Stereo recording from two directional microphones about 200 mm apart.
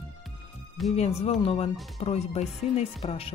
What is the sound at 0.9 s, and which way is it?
Speech, 30° left (ahead or behind).